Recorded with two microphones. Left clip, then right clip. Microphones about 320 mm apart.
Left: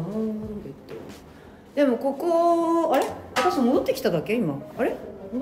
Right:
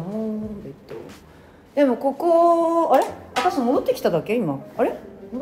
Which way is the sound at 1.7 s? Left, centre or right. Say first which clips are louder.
Right 3 dB; centre.